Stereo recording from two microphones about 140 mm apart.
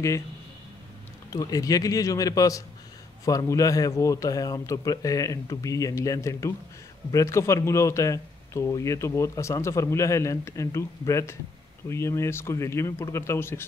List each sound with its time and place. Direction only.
1.3 s speech: 25° left (ahead or behind)